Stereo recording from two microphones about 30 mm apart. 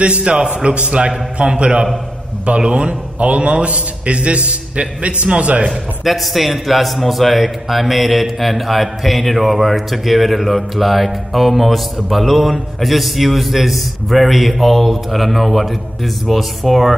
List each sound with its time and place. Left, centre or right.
0.0 s a man's voice: right
2.9 s a man's voice: right
5.7 s a man's voice: centre